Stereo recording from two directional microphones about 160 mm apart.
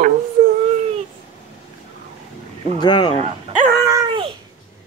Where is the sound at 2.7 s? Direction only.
30° left (ahead or behind).